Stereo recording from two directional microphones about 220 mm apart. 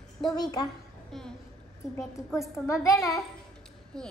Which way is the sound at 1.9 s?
10° left (ahead or behind).